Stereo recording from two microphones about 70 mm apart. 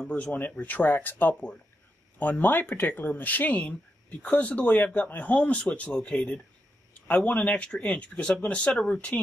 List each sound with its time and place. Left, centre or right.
0.1 s speech: centre